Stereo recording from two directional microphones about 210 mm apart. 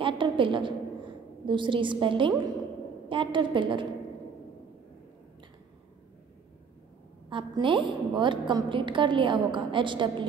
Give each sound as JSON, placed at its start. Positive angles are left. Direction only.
{"t": 0.0, "sound": "a woman's voice", "side_deg": -25}
{"t": 7.2, "sound": "a woman's voice", "side_deg": -25}